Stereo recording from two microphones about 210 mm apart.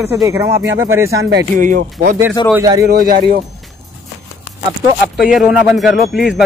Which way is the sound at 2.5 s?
20° right (ahead or behind).